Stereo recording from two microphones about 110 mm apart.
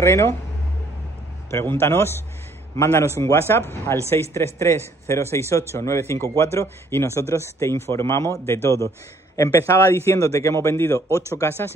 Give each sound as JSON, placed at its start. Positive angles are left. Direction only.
{"t": 0.0, "sound": "a man's voice", "side_deg": 25}
{"t": 1.5, "sound": "a man's voice", "side_deg": 20}